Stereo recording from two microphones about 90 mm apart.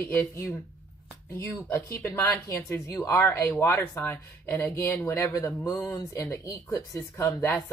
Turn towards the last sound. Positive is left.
turn(degrees=30)  # may be behind; listen again after turning